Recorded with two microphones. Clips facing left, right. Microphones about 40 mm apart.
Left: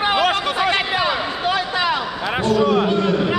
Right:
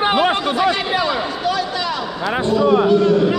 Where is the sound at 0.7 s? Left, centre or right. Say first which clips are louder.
Right 1 dB; left.